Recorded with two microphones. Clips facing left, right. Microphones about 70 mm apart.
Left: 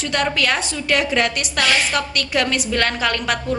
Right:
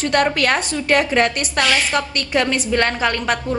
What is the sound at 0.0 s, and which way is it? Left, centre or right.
A woman's voice, right.